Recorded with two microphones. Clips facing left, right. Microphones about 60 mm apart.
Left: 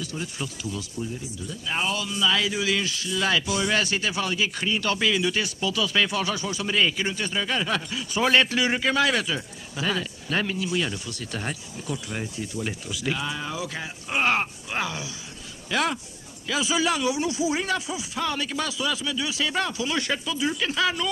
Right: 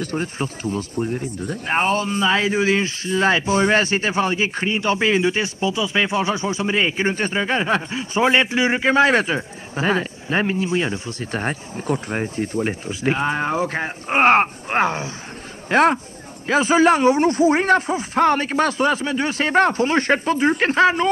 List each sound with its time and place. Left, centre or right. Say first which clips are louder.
0.0 s a man's voice: right 8 dB; right